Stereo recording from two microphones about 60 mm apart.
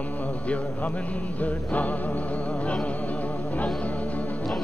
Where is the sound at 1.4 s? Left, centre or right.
Left.